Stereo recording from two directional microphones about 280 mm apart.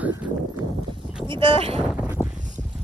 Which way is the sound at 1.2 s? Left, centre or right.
Centre.